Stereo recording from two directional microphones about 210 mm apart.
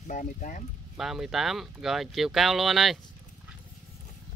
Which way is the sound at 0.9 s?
Centre (ahead or behind).